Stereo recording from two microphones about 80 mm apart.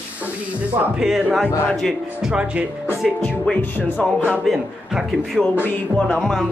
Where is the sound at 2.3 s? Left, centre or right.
Centre.